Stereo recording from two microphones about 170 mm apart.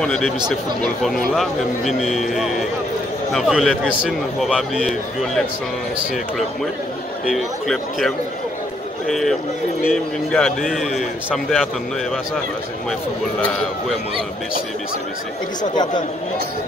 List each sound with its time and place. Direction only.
0.0 s a man's voice: 5° left (ahead or behind)
7.2 s a man's voice: centre (ahead or behind)
15.7 s speech: 25° left (ahead or behind)